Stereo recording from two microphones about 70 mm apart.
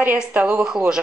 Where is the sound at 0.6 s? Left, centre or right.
Centre.